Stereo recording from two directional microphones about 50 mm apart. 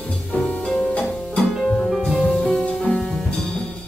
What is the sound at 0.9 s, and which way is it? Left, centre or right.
Music, left.